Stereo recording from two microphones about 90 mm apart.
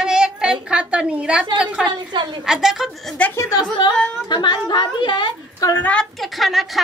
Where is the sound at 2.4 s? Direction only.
5° right (ahead or behind).